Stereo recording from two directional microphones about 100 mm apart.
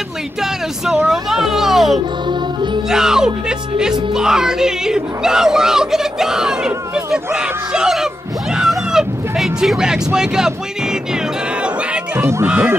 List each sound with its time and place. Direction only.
0.4 s speech: 5° right (ahead or behind)
2.2 s music: 50° right (ahead or behind)
2.9 s speech: 5° right (ahead or behind)
12.2 s speech: 25° right (ahead or behind)
12.4 s speech: 15° right (ahead or behind)